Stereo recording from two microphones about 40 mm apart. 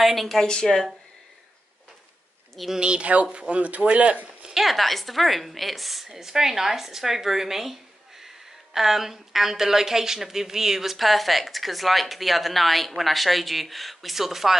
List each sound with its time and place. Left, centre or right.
0.0 s speech: centre
0.4 s speech: left
2.8 s speech: right
4.6 s a woman's voice: centre